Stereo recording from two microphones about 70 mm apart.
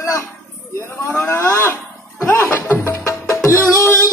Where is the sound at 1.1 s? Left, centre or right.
Left.